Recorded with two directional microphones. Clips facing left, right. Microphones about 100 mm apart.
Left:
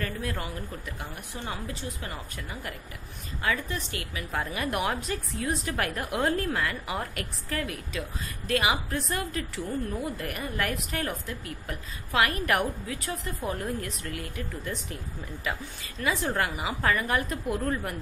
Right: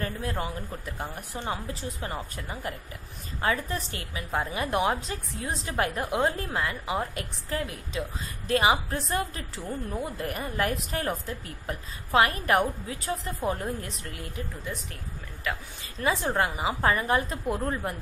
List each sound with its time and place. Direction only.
0.0 s a woman's voice: 30° right (ahead or behind)
15.5 s a woman's voice: 5° left (ahead or behind)
16.0 s a woman's voice: 30° right (ahead or behind)